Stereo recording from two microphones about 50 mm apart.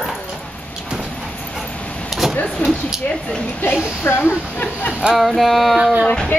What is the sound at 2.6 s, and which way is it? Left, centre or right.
Speech, left.